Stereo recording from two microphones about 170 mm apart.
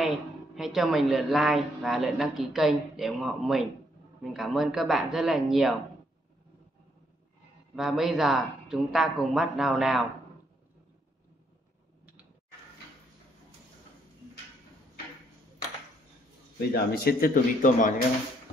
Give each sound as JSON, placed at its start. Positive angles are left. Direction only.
{"t": 0.6, "sound": "a woman's voice", "side_deg": -5}
{"t": 7.7, "sound": "a woman's voice", "side_deg": 0}
{"t": 16.7, "sound": "a man's voice", "side_deg": 65}